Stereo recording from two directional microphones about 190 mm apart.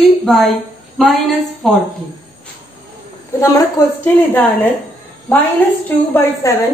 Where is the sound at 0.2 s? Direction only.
Centre (ahead or behind).